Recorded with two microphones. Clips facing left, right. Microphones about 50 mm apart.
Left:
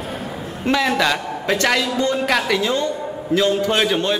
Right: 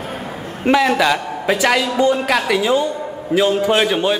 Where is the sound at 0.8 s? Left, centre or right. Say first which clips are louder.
Right 3 dB; centre.